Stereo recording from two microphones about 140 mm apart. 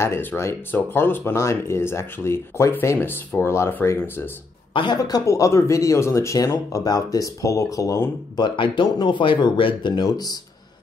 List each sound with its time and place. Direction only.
0.0 s speech: 15° left (ahead or behind)
4.7 s speech: 30° left (ahead or behind)
8.5 s speech: 35° left (ahead or behind)